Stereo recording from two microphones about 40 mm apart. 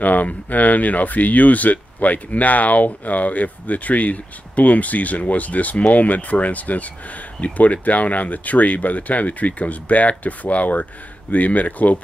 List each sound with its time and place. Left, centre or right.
0.0 s speech: left